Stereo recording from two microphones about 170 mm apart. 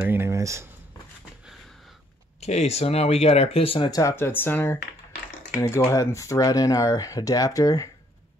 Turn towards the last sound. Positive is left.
turn(degrees=20)  # may be behind; listen again after turning